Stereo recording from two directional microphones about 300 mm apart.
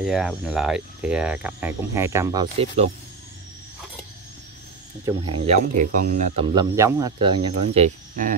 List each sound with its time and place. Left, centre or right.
0.0 s cricket: centre
5.0 s speech: centre